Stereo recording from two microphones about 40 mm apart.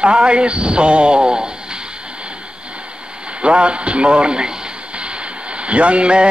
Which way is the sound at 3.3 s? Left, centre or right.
Right.